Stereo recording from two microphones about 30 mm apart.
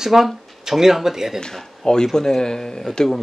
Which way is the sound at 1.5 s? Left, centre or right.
Centre.